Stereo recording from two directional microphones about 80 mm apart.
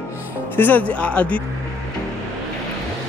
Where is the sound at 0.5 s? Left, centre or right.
Left.